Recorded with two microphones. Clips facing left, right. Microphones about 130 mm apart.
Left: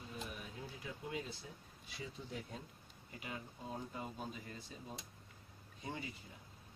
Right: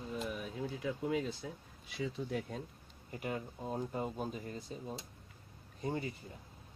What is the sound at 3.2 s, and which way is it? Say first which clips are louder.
Speech: right 8 dB; 50° right (ahead or behind).